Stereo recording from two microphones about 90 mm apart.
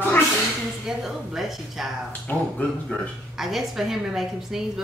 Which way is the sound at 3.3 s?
5° right (ahead or behind).